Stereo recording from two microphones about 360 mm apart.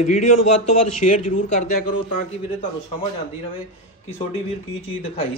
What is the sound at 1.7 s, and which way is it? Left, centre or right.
Speech, left.